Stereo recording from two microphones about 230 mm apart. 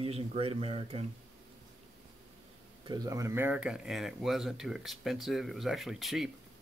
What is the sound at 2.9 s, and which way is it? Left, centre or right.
Speech, centre.